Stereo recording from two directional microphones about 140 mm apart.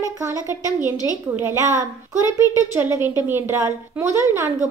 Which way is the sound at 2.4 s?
25° left (ahead or behind).